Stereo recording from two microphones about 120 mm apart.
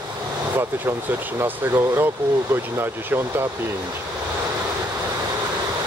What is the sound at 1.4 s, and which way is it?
Speech, 20° right (ahead or behind).